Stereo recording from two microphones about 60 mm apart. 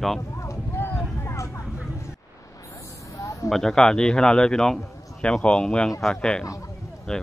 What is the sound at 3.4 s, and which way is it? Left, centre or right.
Speech, centre.